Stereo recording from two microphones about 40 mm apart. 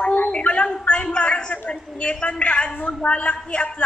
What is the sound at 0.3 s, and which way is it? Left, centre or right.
A woman's voice, left.